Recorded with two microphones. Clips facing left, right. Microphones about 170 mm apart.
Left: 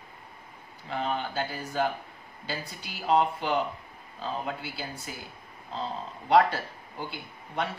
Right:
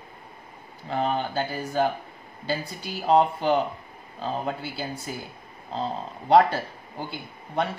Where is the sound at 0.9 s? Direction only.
45° right (ahead or behind).